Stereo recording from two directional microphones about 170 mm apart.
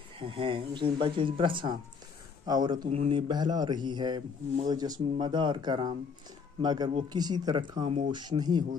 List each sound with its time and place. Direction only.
0.2 s a man's voice: 30° right (ahead or behind)
2.9 s a man's voice: 35° right (ahead or behind)